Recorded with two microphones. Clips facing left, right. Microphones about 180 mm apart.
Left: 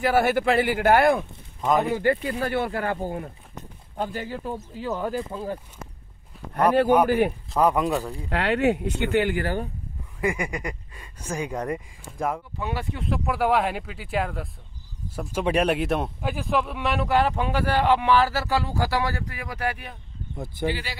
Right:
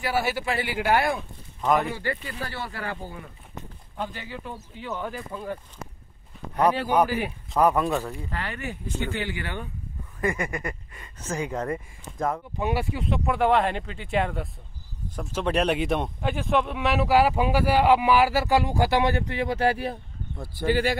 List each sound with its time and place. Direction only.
0.0 s speech: 50° left (ahead or behind); by 5.6 s 30° left (ahead or behind)
7.1 s speech: 55° left (ahead or behind)
7.6 s speech: 15° left (ahead or behind)
8.3 s speech: 75° left (ahead or behind); by 9.7 s 40° left (ahead or behind)
10.2 s speech: 10° left (ahead or behind)
12.5 s speech: 15° right (ahead or behind)
12.9 s speech: centre (ahead or behind); by 20.0 s 30° right (ahead or behind)
20.3 s speech: 20° left (ahead or behind)
20.6 s speech: 50° right (ahead or behind)